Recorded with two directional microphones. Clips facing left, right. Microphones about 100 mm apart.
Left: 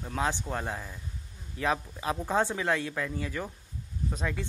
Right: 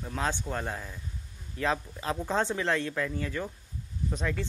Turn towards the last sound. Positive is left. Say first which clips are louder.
# right 1 dB
turn(degrees=10)  # may be behind; listen again after turning